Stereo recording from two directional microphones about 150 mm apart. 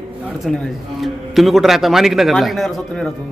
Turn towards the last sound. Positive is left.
turn(degrees=0)  # may be behind; listen again after turning